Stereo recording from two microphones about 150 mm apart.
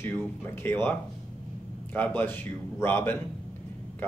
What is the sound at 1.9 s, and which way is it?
Speech, 15° left (ahead or behind).